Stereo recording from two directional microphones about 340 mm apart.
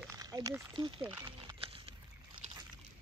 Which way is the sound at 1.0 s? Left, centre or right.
Centre.